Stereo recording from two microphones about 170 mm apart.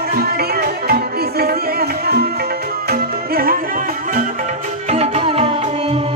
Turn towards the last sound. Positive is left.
turn(degrees=-35)  # may be behind; listen again after turning